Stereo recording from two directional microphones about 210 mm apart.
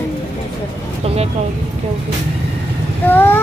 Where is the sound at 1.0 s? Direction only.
30° right (ahead or behind).